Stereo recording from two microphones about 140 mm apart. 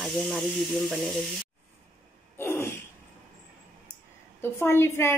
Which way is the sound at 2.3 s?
20° left (ahead or behind).